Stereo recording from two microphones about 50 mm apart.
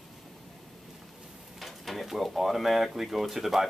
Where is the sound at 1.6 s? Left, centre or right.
Centre.